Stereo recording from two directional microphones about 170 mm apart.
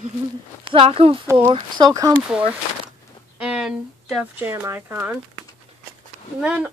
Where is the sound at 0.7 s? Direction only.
35° right (ahead or behind).